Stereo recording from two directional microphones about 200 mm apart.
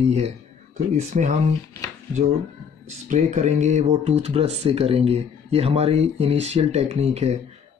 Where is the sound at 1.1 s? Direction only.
35° right (ahead or behind).